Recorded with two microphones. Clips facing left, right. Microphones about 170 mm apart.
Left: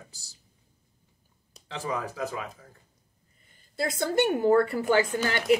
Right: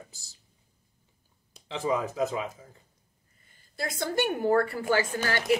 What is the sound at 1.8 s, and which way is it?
Speech, 20° right (ahead or behind).